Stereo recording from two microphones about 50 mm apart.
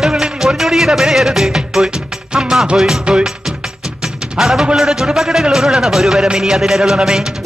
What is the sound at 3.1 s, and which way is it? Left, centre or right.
Speech, centre.